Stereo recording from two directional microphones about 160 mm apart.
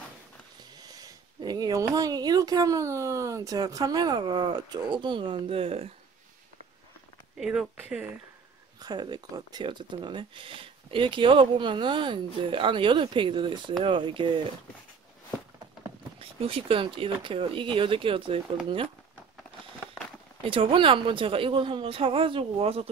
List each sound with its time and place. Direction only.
0.8 s speech: 25° right (ahead or behind)
7.3 s speech: 5° right (ahead or behind)
8.7 s speech: 25° right (ahead or behind)
16.2 s speech: 35° right (ahead or behind)
20.4 s speech: 35° right (ahead or behind)